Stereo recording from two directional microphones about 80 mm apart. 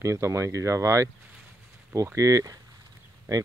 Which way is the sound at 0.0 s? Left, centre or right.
Right.